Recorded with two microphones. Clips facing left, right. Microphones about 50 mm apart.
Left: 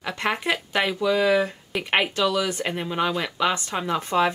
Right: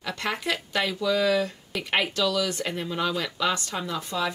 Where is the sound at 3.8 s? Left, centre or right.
Left.